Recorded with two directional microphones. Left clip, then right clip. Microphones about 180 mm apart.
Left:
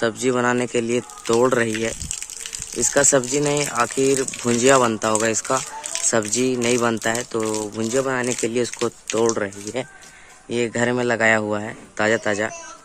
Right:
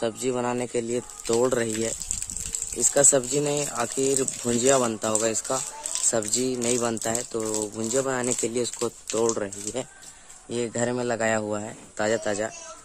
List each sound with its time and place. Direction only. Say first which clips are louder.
0.0 s speech: left 7 dB; centre (ahead or behind)
2.8 s speech: left 4 dB; centre (ahead or behind)
7.9 s speech: left 4 dB; 15° right (ahead or behind)